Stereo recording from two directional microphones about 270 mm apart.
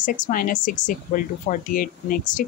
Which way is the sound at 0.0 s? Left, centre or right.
Left.